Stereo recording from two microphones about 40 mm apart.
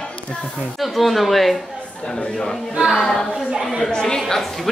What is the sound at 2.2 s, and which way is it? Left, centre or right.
Speech, left.